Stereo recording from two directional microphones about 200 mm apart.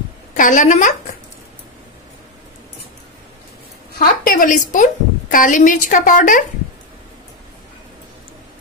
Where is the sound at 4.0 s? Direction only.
45° left (ahead or behind).